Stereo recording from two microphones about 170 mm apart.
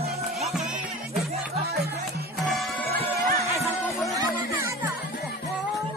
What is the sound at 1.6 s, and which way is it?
Music, 70° right (ahead or behind).